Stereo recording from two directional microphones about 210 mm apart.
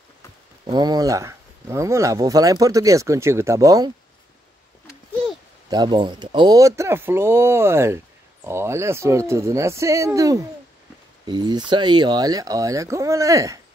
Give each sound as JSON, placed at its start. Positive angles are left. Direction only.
{"t": 0.7, "sound": "speech", "side_deg": -20}
{"t": 5.7, "sound": "speech", "side_deg": -20}